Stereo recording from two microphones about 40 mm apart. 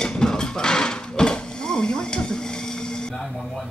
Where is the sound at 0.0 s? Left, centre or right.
Centre.